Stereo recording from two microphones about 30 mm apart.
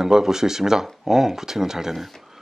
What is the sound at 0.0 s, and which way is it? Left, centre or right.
Speech, centre.